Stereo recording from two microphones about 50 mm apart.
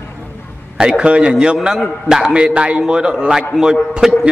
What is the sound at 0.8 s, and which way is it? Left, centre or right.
A man's voice, centre.